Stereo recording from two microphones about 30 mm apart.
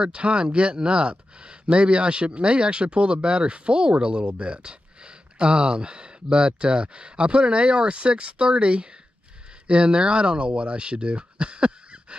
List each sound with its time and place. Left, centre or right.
0.0 s speech: right